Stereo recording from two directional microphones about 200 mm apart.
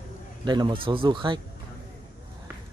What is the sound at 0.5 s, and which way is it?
Speech, 20° right (ahead or behind).